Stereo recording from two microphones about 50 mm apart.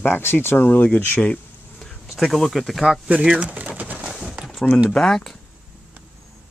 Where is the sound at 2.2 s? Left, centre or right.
Centre.